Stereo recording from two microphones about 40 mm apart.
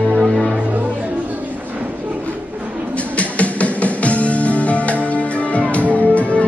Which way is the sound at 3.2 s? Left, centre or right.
Left.